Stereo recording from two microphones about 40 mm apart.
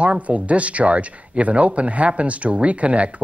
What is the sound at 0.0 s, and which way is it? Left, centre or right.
Speech, right.